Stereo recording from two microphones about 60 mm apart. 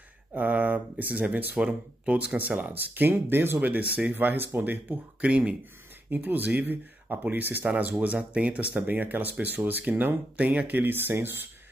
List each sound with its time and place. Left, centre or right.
0.3 s speech: right
3.6 s speech: right
5.2 s speech: right
6.0 s speech: right
8.0 s speech: right